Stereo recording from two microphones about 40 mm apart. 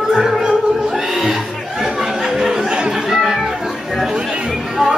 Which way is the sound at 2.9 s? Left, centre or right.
Centre.